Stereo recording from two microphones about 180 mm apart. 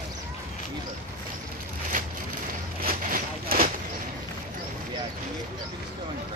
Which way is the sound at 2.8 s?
55° right (ahead or behind).